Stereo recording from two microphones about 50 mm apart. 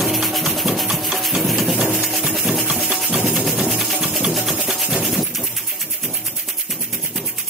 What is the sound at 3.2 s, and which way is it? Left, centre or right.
Music, centre.